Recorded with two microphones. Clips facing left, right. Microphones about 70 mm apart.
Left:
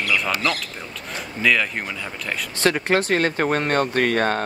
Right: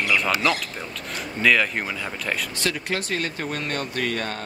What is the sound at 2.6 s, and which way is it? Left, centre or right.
Speech, left.